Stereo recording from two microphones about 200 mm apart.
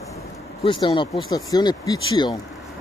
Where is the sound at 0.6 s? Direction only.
25° left (ahead or behind).